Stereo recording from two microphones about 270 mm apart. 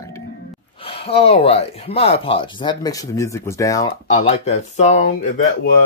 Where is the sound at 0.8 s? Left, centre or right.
Left.